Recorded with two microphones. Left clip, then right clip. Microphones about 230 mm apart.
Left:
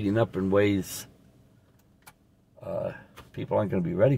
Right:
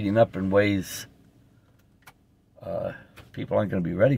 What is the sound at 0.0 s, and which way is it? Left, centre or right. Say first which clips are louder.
Speech: right 5 dB; centre.